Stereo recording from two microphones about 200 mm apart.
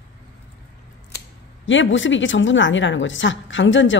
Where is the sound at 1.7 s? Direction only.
70° left (ahead or behind).